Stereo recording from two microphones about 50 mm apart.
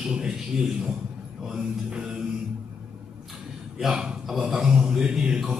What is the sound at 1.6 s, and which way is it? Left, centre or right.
Music, centre.